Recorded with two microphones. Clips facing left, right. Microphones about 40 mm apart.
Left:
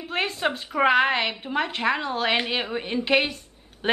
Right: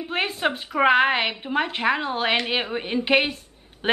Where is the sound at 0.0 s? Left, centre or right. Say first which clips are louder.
Right 1 dB; centre.